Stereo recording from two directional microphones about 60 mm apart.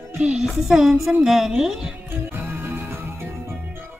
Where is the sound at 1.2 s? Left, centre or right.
Centre.